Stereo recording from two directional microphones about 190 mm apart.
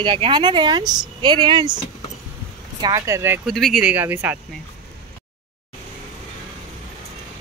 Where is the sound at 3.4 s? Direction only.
Centre (ahead or behind).